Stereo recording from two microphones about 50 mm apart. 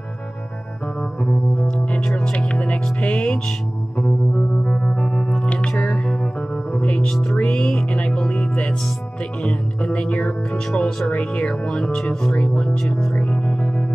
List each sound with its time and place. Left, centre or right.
1.2 s music: centre
4.6 s music: centre
5.4 s music: left
11.1 s speech: left
12.9 s speech: centre
13.2 s music: centre